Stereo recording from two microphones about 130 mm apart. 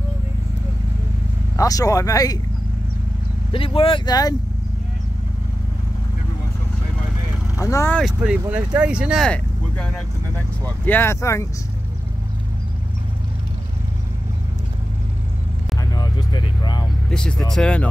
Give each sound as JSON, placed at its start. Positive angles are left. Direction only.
{"t": 1.6, "sound": "speech", "side_deg": 25}
{"t": 3.5, "sound": "speech", "side_deg": 45}
{"t": 7.5, "sound": "speech", "side_deg": 25}
{"t": 8.0, "sound": "speech", "side_deg": -10}
{"t": 9.2, "sound": "speech", "side_deg": 10}
{"t": 15.8, "sound": "vehicle", "side_deg": 30}
{"t": 17.1, "sound": "speech", "side_deg": 5}